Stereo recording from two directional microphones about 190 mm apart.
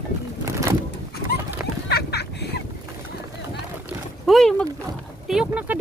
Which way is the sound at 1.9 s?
60° left (ahead or behind).